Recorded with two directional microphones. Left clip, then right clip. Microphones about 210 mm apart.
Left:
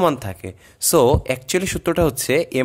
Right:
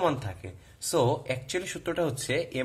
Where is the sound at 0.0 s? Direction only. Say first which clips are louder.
Left 9 dB; 50° left (ahead or behind).